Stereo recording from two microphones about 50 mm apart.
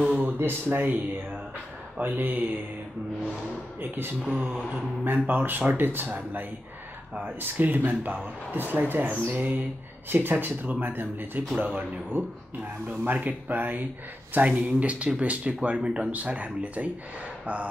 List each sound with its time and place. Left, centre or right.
0.2 s speech: right
3.8 s speech: right
8.5 s speech: right